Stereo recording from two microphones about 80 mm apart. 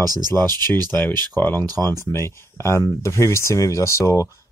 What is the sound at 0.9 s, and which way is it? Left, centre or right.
Speech, left.